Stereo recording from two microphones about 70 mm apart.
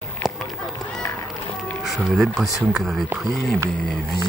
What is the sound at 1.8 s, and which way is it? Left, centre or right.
Speech, centre.